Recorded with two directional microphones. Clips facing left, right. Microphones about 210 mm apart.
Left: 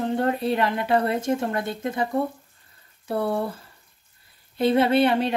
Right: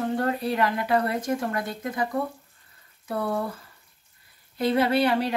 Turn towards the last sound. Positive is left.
turn(degrees=25)  # may be behind; listen again after turning